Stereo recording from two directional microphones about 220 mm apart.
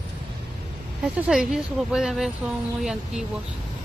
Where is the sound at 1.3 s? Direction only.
Centre (ahead or behind).